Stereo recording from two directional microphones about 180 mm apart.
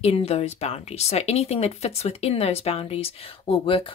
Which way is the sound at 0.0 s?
35° left (ahead or behind).